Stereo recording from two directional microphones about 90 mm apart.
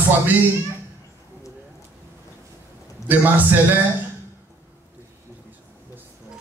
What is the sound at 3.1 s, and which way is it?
Speech, 20° right (ahead or behind).